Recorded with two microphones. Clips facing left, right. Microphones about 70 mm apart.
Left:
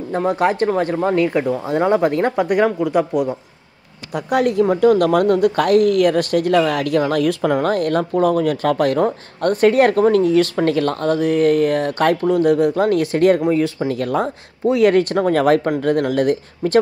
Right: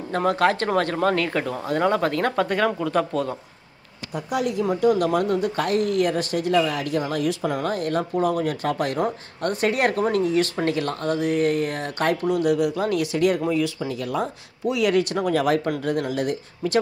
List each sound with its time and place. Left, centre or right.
0.1 s speech: centre
4.1 s speech: left
12.3 s speech: left